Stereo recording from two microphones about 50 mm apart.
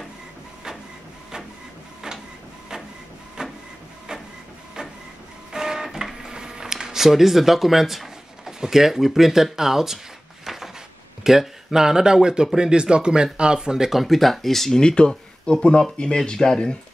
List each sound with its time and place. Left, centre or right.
2.0 s printer: centre
3.4 s printer: centre
5.5 s guitar: centre
10.4 s a sound: centre
11.2 s speech: centre
14.8 s speech: centre